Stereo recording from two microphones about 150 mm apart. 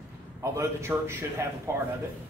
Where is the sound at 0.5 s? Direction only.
20° right (ahead or behind).